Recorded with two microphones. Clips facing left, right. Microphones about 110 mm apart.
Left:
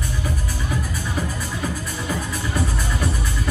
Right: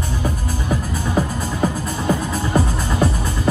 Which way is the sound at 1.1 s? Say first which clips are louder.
Right 8 dB; 35° right (ahead or behind).